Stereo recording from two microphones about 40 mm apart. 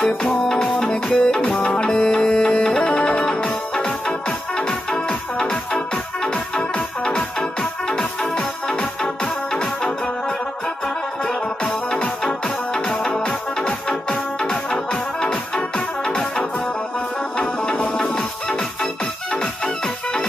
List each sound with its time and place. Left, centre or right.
0.0 s music: centre
0.7 s music: centre
7.1 s music: centre
11.2 s music: centre
16.1 s music: centre